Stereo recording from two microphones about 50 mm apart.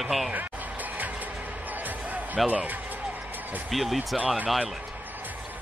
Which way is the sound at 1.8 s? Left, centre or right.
Right.